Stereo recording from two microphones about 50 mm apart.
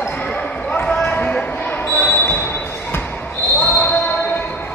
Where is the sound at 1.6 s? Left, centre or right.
Left.